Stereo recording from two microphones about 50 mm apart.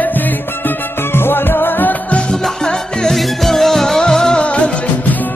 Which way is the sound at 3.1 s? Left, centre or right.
Centre.